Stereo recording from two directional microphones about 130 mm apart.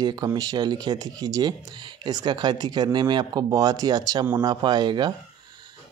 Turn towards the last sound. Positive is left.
turn(degrees=-35)  # may be behind; listen again after turning